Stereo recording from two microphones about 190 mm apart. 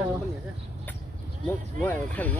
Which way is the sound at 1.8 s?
10° left (ahead or behind).